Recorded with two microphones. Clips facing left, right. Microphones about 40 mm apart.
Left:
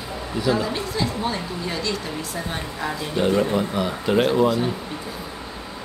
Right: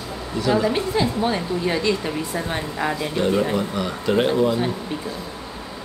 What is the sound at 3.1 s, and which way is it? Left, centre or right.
Speech, centre.